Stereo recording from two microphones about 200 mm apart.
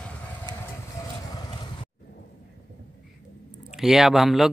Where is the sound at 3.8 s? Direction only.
Centre (ahead or behind).